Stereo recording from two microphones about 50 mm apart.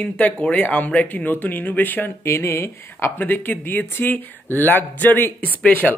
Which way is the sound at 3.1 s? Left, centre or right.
Left.